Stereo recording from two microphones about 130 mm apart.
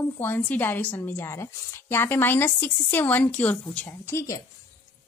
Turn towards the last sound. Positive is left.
turn(degrees=25)  # may be behind; listen again after turning